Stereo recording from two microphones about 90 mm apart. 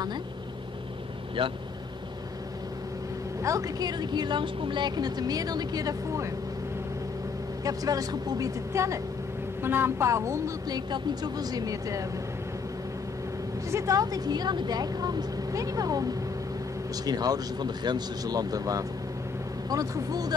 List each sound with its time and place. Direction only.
1.4 s speech: 80° right
3.4 s speech: 40° right (ahead or behind)
7.6 s speech: 40° right (ahead or behind)
10.7 s speech: 50° right (ahead or behind)
13.7 s speech: 35° right (ahead or behind)